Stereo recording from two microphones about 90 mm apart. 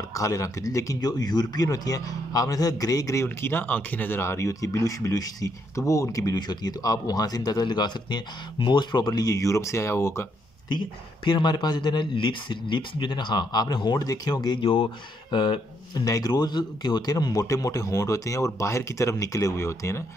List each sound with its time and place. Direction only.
0.1 s speech: 35° left (ahead or behind)
10.7 s speech: 60° left (ahead or behind)
16.0 s speech: 40° left (ahead or behind)